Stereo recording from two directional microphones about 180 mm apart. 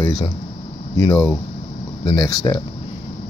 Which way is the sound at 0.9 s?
20° left (ahead or behind).